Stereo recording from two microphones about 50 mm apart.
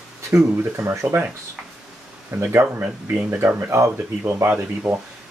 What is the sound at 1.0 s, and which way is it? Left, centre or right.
Speech, right.